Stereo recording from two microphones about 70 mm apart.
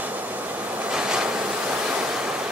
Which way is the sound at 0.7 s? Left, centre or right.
Centre.